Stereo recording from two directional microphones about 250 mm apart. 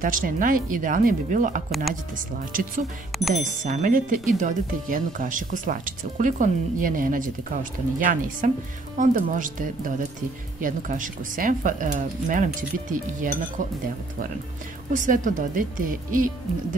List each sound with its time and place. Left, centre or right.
0.0 s speech: right
3.1 s speech: centre
3.3 s speech: right
14.9 s speech: right